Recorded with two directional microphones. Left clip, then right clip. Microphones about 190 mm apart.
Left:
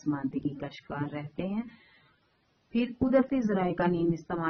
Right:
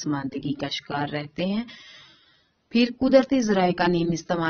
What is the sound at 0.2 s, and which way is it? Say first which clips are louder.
Speech: right 5 dB; 30° right (ahead or behind).